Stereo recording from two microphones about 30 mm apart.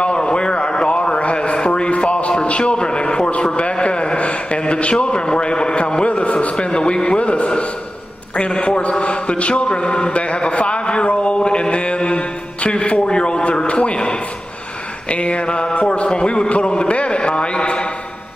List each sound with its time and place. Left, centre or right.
0.0 s a sound: left
2.7 s a sound: left
4.9 s a man's voice: left
6.0 s a man's voice: left
6.8 s a man's voice: left
8.6 s a man's voice: left
15.0 s a man's voice: left
15.4 s a man's voice: left
15.7 s a man's voice: left